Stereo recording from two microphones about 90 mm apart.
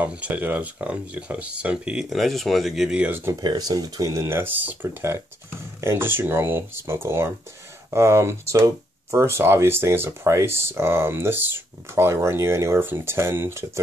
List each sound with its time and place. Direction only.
0.0 s speech: 15° right (ahead or behind)
2.1 s speech: centre (ahead or behind)
3.1 s speech: 25° right (ahead or behind)
3.3 s speech: 45° right (ahead or behind); by 4.7 s 20° right (ahead or behind)
5.8 s speech: 25° right (ahead or behind)